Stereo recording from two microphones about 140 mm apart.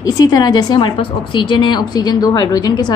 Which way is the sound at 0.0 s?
25° left (ahead or behind).